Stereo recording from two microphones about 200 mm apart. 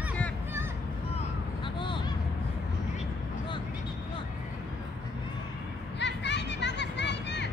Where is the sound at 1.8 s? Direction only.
25° left (ahead or behind).